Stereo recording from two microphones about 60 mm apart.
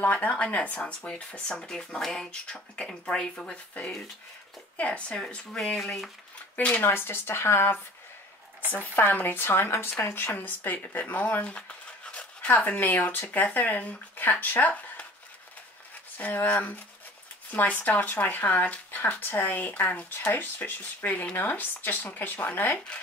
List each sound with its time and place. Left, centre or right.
0.0 s speech: left
4.7 s speech: left
6.8 s speech: left
8.7 s speech: left
12.1 s pant: left
12.9 s speech: left
16.2 s speech: left